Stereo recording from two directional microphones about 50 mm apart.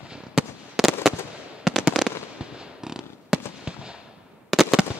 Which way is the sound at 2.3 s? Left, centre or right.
Centre.